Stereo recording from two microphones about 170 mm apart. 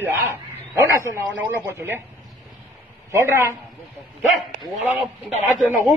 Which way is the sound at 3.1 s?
15° right (ahead or behind).